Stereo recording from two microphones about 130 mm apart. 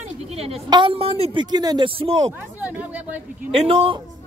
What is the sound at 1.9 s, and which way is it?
Speech, 45° right (ahead or behind).